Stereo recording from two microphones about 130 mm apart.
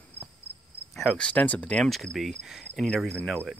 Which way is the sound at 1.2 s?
10° left (ahead or behind).